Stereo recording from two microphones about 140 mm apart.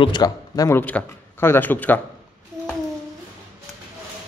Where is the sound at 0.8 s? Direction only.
10° left (ahead or behind).